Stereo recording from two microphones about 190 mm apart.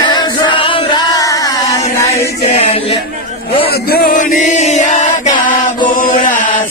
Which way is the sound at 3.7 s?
50° left (ahead or behind).